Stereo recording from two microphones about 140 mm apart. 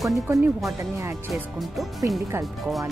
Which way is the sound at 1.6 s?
Centre (ahead or behind).